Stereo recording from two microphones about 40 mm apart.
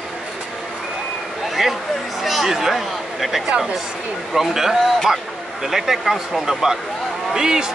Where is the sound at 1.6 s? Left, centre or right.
Centre.